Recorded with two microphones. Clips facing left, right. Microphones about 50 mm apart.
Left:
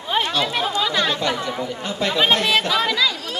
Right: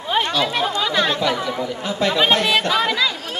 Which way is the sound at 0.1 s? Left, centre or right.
Centre.